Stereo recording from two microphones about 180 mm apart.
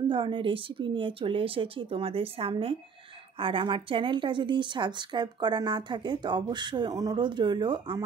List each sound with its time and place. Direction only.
0.1 s a woman's voice: 25° right (ahead or behind)